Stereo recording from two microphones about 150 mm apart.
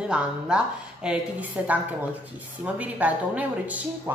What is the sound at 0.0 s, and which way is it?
A woman's voice, 5° right (ahead or behind).